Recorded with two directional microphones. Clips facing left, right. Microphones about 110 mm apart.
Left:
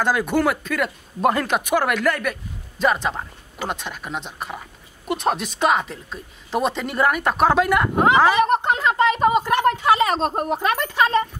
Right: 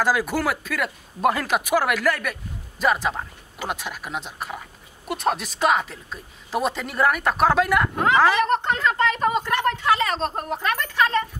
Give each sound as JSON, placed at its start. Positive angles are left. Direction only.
{"t": 0.0, "sound": "speech", "side_deg": -5}
{"t": 7.9, "sound": "speech", "side_deg": 15}
{"t": 8.2, "sound": "speech", "side_deg": 5}